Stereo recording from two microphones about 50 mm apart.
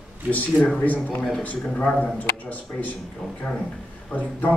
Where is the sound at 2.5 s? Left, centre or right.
Left.